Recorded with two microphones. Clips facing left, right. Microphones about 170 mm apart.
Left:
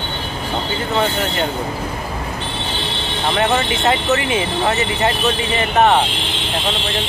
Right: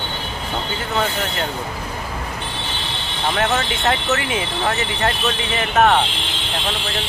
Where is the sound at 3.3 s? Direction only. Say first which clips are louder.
Left 4 dB; centre (ahead or behind).